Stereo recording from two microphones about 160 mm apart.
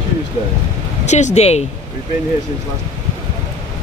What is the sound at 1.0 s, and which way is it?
Speech, 45° left (ahead or behind).